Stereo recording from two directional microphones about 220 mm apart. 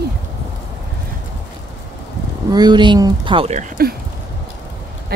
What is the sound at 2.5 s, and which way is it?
Speech, 20° right (ahead or behind).